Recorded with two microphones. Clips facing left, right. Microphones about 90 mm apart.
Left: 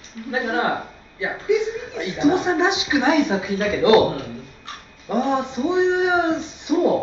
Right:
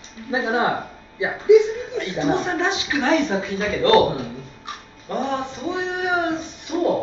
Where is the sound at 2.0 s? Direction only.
15° left (ahead or behind).